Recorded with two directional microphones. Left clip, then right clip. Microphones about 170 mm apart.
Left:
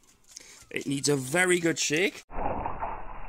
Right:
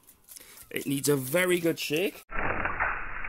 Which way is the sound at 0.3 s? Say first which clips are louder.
Left 1 dB; 10° left (ahead or behind).